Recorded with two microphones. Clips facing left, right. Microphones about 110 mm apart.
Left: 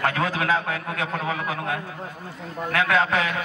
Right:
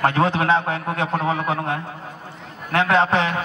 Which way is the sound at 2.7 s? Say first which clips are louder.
Right 4 dB; 25° right (ahead or behind).